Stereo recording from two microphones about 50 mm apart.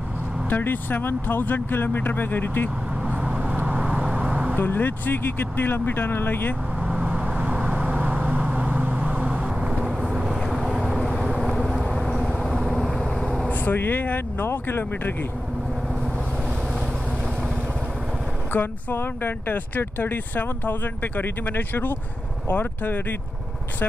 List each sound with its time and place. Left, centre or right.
0.5 s speech: left
3.3 s vehicle: right
4.6 s speech: left
6.8 s vehicle: right
9.7 s vehicle: centre
11.3 s vehicle: centre
13.5 s speech: left
18.5 s speech: left